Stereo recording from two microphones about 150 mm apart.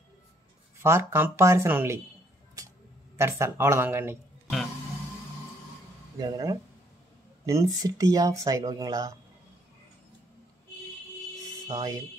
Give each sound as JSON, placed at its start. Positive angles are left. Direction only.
{"t": 0.8, "sound": "speech", "side_deg": -15}
{"t": 3.2, "sound": "speech", "side_deg": -20}
{"t": 6.1, "sound": "speech", "side_deg": -25}
{"t": 11.6, "sound": "speech", "side_deg": -25}